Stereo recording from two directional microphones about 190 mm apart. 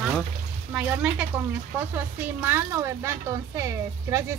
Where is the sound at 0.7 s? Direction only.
5° right (ahead or behind).